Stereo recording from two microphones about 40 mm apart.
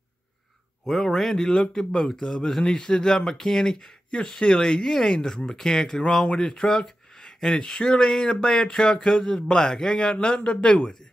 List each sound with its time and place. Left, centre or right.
0.8 s speech: centre; by 10.9 s left